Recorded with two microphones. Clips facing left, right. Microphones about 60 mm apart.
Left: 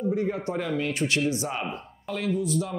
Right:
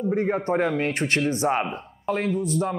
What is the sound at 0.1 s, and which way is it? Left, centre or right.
Speech, right.